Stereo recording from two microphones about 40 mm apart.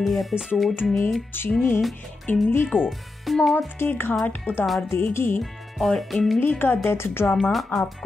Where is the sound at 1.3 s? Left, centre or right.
Left.